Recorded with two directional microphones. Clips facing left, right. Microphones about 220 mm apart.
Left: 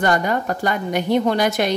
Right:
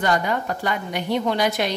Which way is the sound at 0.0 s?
45° left (ahead or behind).